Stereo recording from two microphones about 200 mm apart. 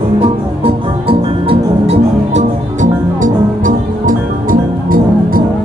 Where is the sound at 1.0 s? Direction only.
30° right (ahead or behind).